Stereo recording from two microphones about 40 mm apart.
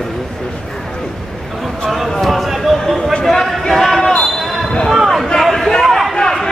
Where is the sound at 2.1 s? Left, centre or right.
Centre.